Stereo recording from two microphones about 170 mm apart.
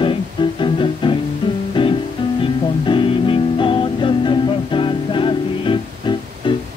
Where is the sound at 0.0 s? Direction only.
30° left (ahead or behind).